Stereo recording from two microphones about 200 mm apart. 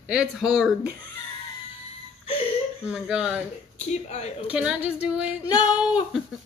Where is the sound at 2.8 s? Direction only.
5° right (ahead or behind).